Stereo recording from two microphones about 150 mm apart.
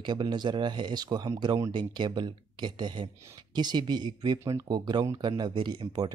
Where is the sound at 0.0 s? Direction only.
30° right (ahead or behind).